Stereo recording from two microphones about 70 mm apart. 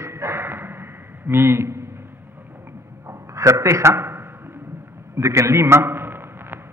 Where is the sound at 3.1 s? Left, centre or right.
Right.